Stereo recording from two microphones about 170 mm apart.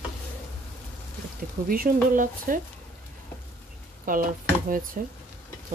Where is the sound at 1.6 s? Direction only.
55° right (ahead or behind).